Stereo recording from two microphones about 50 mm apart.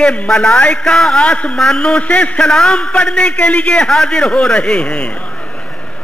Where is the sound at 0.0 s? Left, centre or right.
Left.